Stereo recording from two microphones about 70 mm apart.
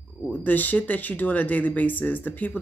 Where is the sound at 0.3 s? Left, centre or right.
Left.